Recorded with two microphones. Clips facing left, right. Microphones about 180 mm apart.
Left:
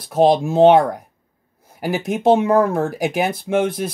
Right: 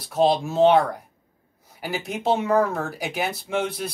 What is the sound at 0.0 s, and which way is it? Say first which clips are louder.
Speech: left 5 dB; 50° left (ahead or behind).